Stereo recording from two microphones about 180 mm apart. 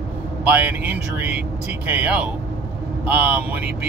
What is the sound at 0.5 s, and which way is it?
Speech, 10° right (ahead or behind).